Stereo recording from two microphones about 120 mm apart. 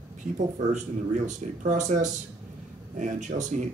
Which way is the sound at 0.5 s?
90° right.